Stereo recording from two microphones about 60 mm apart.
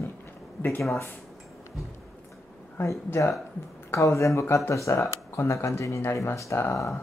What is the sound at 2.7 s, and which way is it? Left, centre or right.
Speech, left.